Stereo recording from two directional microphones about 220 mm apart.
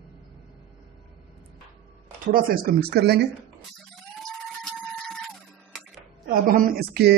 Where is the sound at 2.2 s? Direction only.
40° right (ahead or behind).